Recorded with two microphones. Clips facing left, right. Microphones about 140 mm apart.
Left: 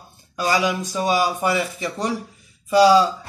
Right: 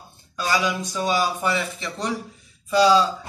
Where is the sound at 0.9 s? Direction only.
15° left (ahead or behind).